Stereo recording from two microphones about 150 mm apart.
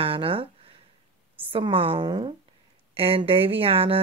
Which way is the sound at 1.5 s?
40° right (ahead or behind).